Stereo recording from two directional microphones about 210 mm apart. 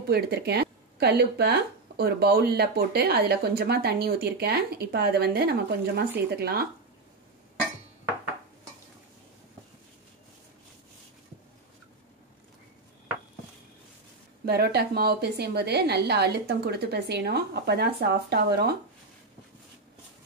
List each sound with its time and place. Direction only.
0.1 s speech: 50° right (ahead or behind)
14.4 s speech: 50° right (ahead or behind)